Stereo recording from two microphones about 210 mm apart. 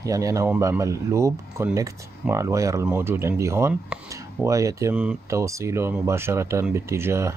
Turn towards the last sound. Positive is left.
turn(degrees=-10)  # may be behind; listen again after turning